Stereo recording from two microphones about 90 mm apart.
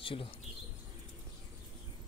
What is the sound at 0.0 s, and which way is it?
Speech, 75° left (ahead or behind).